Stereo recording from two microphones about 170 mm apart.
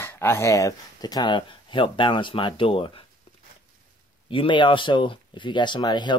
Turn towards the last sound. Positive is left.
turn(degrees=25)  # may be behind; listen again after turning